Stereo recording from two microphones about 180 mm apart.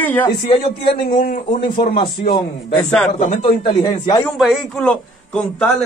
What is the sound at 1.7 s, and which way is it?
Speech, 30° left (ahead or behind).